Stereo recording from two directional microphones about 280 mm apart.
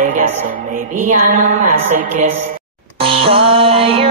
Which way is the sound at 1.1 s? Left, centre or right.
Right.